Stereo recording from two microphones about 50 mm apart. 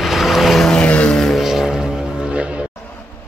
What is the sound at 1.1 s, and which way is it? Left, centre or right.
Music, centre.